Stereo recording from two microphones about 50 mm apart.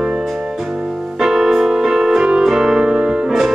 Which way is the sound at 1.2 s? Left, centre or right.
Centre.